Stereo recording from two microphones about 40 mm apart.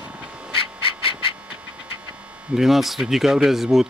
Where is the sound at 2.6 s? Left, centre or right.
Centre.